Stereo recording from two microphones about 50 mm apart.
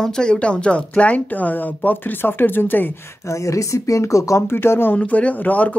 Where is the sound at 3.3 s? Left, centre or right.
Left.